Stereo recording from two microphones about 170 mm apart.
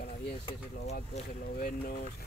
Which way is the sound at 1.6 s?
55° left (ahead or behind).